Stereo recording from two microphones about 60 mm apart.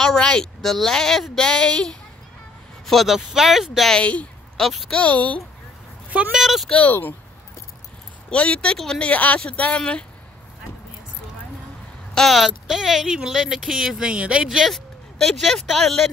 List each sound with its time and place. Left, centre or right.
0.0 s a woman's voice: centre
2.9 s speech: centre
3.9 s speech: left
4.6 s speech: centre
4.9 s speech: left
6.0 s a sound: right
6.3 s speech: centre
6.9 s speech: left
8.3 s speech: centre
12.1 s speech: centre
14.6 s speech: centre